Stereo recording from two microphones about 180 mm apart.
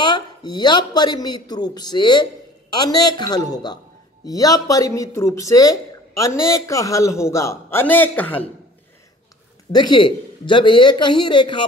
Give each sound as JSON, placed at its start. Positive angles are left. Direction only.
{"t": 0.0, "sound": "speech", "side_deg": 25}
{"t": 9.7, "sound": "speech", "side_deg": 25}